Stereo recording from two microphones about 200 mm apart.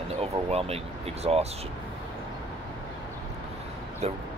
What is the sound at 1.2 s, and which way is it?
Speech, 30° right (ahead or behind).